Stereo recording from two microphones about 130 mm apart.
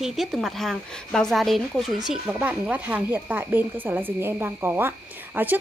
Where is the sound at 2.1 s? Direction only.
10° right (ahead or behind).